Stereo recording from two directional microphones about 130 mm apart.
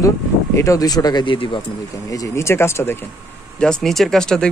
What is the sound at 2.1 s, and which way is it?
Speech, 25° left (ahead or behind).